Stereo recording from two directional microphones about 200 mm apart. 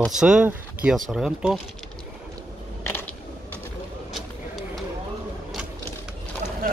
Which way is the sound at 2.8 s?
10° left (ahead or behind).